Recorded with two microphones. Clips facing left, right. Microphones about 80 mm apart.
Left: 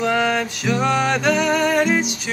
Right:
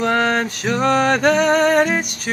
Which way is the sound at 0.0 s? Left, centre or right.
Right.